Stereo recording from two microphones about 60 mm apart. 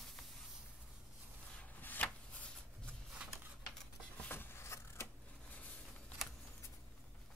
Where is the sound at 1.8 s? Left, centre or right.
Left.